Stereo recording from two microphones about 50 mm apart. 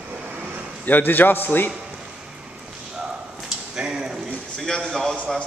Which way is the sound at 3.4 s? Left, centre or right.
Centre.